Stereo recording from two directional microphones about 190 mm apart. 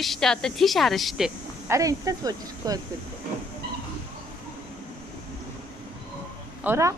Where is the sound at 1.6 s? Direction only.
15° right (ahead or behind).